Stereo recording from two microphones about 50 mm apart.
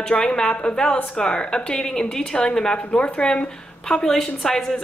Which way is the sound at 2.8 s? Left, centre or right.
Left.